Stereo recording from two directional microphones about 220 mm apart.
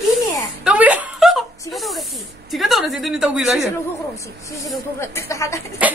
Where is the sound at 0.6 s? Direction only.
5° right (ahead or behind).